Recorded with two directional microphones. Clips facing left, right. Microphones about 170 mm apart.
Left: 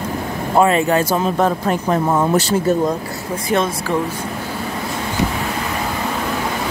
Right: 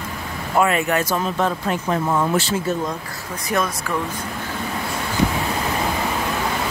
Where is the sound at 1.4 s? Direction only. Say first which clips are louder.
Left 4 dB; 40° left (ahead or behind).